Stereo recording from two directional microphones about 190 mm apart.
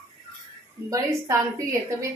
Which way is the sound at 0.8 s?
20° right (ahead or behind).